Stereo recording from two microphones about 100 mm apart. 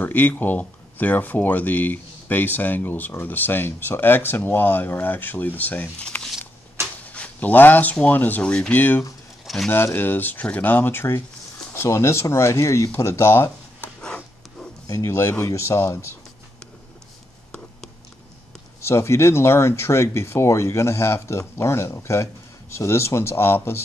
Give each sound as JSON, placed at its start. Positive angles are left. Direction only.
{"t": 0.0, "sound": "speech", "side_deg": 20}
{"t": 14.0, "sound": "a sound", "side_deg": 10}
{"t": 14.9, "sound": "speech", "side_deg": 30}
{"t": 18.8, "sound": "speech", "side_deg": 25}